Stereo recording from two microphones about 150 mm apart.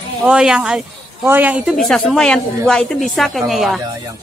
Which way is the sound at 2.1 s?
5° left (ahead or behind).